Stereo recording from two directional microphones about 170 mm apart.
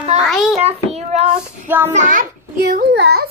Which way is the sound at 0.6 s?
40° right (ahead or behind).